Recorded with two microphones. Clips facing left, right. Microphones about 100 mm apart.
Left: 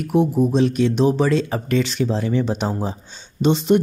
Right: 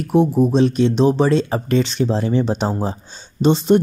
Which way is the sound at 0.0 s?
35° right (ahead or behind).